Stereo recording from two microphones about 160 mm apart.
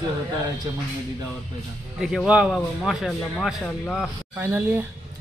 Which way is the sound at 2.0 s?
Centre (ahead or behind).